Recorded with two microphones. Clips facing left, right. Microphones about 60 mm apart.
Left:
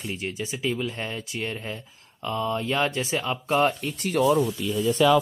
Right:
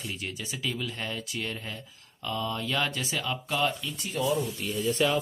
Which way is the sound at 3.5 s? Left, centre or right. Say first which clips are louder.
Left 7 dB; left.